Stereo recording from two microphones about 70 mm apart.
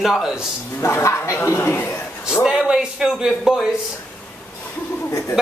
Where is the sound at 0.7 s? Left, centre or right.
Left.